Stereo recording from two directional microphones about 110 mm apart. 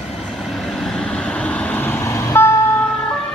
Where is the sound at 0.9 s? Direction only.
10° left (ahead or behind); by 2.6 s 25° left (ahead or behind).